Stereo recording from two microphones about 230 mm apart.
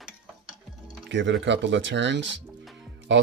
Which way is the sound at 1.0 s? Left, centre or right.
Right.